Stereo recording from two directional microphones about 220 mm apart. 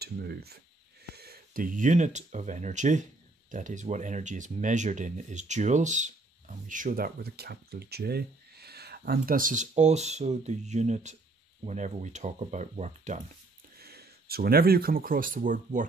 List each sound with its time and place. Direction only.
0.0 s a sound: 45° right (ahead or behind)
1.1 s speech: 45° right (ahead or behind)
13.7 s speech: 45° right (ahead or behind)